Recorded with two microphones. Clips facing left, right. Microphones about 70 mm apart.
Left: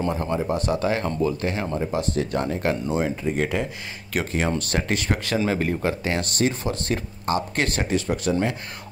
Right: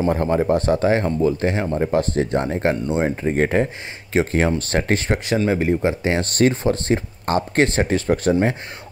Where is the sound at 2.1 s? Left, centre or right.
Right.